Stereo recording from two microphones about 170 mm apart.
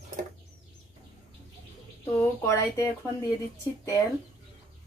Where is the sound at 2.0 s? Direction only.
15° left (ahead or behind).